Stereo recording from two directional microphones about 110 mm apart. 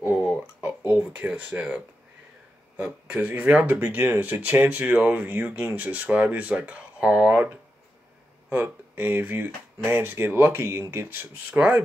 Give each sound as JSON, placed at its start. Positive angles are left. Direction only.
{"t": 0.0, "sound": "a sound", "side_deg": -10}
{"t": 0.6, "sound": "speech", "side_deg": -15}
{"t": 2.8, "sound": "speech", "side_deg": -15}